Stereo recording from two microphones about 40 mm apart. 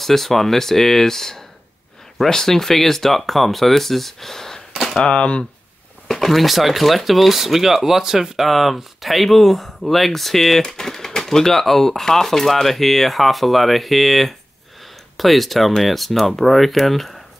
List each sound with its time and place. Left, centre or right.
0.0 s speech: centre
4.9 s speech: left
6.0 s speech: centre